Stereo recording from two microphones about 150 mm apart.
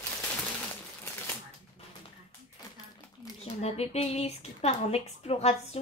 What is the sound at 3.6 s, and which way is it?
A woman's voice, 45° left (ahead or behind).